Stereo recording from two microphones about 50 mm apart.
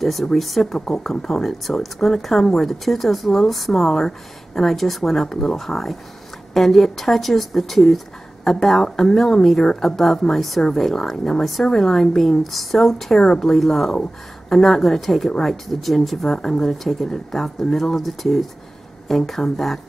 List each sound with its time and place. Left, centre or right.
0.0 s speech: centre
0.7 s a woman's voice: centre
1.3 s a woman's voice: centre